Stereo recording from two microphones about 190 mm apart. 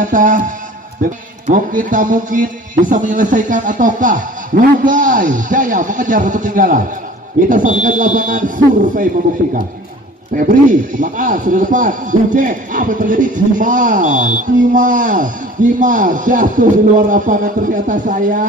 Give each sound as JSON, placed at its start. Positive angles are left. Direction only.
{"t": 0.0, "sound": "a man's voice", "side_deg": -45}
{"t": 1.5, "sound": "a man's voice", "side_deg": -45}
{"t": 10.3, "sound": "a man's voice", "side_deg": -45}